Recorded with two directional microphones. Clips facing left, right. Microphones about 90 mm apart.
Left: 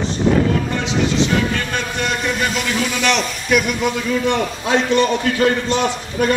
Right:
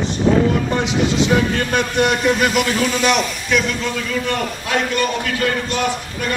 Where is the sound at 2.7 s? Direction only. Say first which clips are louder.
Right 2 dB; 10° right (ahead or behind).